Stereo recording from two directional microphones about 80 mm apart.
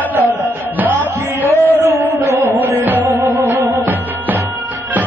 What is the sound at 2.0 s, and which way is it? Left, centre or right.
Music, right.